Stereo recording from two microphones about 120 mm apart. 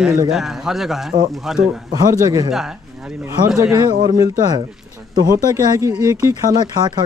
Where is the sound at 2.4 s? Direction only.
5° right (ahead or behind).